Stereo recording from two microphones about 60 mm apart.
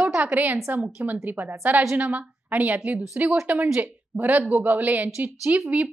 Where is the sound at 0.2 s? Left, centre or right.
Right.